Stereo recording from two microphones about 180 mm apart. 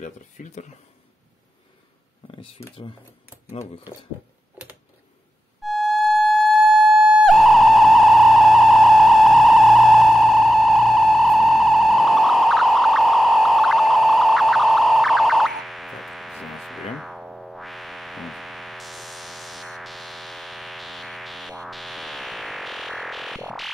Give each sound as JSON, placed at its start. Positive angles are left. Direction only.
{"t": 0.0, "sound": "speech", "side_deg": 40}
{"t": 2.2, "sound": "speech", "side_deg": 30}
{"t": 5.6, "sound": "music", "side_deg": 0}